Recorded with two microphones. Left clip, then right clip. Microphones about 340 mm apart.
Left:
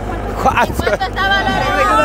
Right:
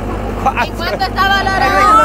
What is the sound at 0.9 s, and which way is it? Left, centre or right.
Speech, right.